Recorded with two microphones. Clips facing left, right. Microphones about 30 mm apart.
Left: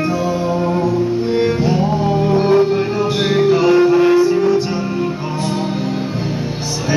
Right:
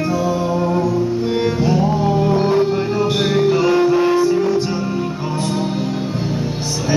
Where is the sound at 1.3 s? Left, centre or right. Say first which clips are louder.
Left 2 dB; centre.